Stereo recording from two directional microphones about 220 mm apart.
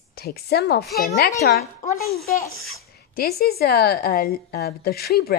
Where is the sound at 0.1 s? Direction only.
45° left (ahead or behind).